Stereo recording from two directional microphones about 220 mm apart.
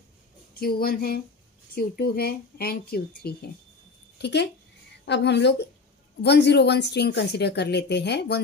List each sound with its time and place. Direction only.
0.6 s speech: 45° left (ahead or behind)